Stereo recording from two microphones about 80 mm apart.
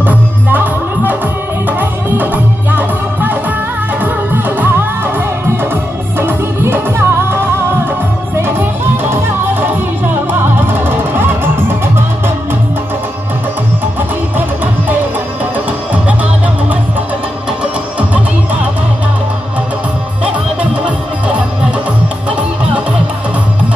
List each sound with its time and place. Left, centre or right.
0.0 s music: right
6.1 s music: right
9.1 s music: right